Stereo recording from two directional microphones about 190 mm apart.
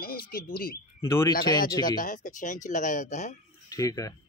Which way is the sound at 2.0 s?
45° left (ahead or behind).